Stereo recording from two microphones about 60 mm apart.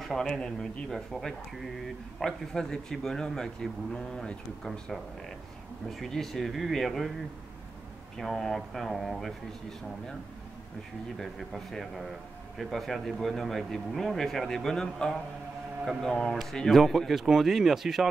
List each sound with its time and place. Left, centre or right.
0.0 s a man's voice: centre
8.2 s speech: centre
11.1 s speech: centre